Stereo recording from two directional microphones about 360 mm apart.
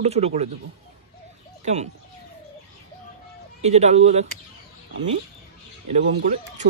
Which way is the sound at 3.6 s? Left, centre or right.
Centre.